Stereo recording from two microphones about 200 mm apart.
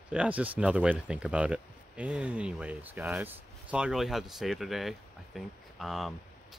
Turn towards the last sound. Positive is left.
turn(degrees=0)  # may be behind; listen again after turning